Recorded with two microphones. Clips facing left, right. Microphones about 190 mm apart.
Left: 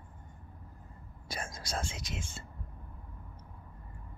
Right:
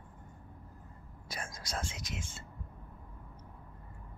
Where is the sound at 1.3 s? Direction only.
25° left (ahead or behind).